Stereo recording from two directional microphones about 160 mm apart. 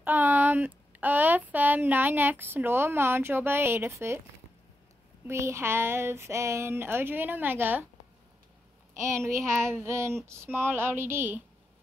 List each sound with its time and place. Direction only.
0.0 s speech: 10° right (ahead or behind)
5.2 s speech: 15° right (ahead or behind)
9.0 s speech: 20° right (ahead or behind)